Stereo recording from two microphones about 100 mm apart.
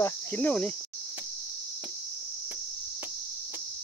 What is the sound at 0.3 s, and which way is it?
Speech, 15° left (ahead or behind).